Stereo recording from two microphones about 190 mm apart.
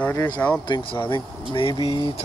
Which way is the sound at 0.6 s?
25° left (ahead or behind).